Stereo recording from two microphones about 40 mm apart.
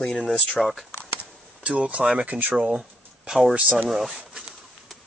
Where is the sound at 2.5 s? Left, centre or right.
Right.